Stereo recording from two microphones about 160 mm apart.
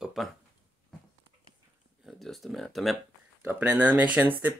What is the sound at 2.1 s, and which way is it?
Speech, centre (ahead or behind).